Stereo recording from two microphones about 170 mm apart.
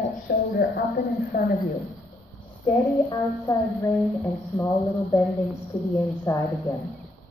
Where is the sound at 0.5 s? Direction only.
60° left (ahead or behind).